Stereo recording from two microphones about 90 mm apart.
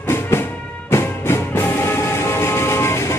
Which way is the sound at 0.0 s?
25° left (ahead or behind).